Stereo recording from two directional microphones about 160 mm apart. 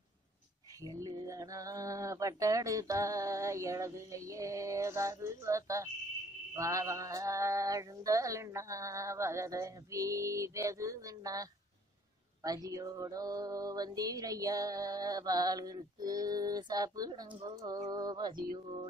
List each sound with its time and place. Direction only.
0.8 s music: 20° right (ahead or behind)
12.4 s music: 20° right (ahead or behind)